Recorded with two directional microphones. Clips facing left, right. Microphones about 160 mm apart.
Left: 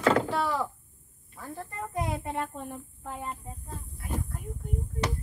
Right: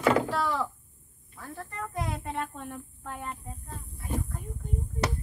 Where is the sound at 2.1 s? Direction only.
10° left (ahead or behind).